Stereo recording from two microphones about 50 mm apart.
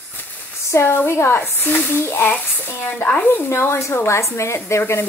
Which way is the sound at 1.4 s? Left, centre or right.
Left.